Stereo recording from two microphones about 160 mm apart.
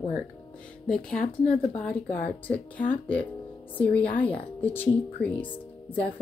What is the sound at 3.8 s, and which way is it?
A woman's voice, 10° left (ahead or behind).